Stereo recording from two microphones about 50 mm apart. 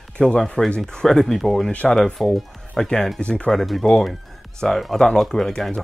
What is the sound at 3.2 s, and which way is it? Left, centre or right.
Speech, left.